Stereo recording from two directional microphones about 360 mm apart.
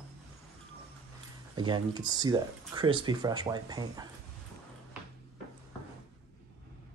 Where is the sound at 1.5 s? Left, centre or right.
Centre.